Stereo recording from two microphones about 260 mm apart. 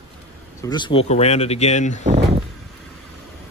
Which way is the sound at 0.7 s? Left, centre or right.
Centre.